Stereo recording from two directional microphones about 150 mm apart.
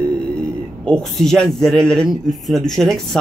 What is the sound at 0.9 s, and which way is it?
Speech, 5° left (ahead or behind).